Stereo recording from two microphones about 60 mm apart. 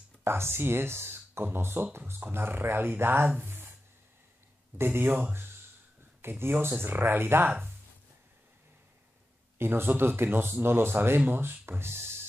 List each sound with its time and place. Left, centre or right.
0.2 s speech: right
3.4 s a sound: right
4.7 s speech: right
9.6 s speech: right